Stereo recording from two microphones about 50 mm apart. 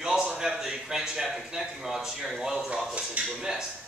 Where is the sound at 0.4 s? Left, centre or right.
Centre.